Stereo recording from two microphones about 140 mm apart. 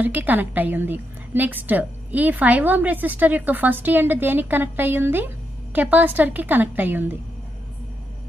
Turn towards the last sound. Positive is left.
turn(degrees=-15)  # may be behind; listen again after turning